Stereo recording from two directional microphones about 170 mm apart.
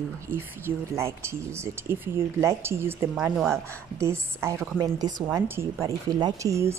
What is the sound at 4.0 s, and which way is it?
Speech, 15° right (ahead or behind).